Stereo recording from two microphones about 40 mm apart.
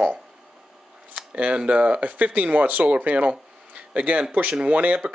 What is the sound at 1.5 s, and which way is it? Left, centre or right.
Speech, right.